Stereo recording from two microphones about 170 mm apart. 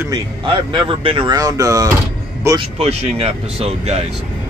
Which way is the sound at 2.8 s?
35° right (ahead or behind).